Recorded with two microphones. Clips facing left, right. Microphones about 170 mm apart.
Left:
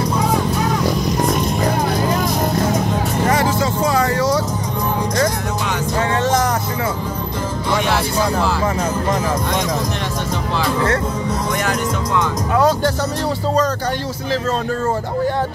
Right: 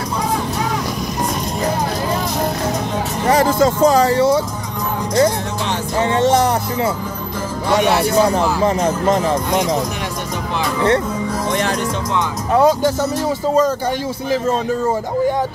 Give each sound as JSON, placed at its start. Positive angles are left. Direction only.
{"t": 3.6, "sound": "music", "side_deg": -40}
{"t": 4.1, "sound": "music", "side_deg": -25}
{"t": 5.9, "sound": "music", "side_deg": -20}
{"t": 8.4, "sound": "speech", "side_deg": -25}